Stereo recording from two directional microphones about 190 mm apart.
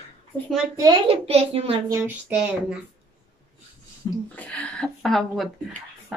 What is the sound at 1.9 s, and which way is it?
Speech, 5° right (ahead or behind).